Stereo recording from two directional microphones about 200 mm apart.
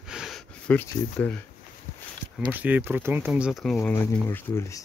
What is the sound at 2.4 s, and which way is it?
Speech, 10° right (ahead or behind).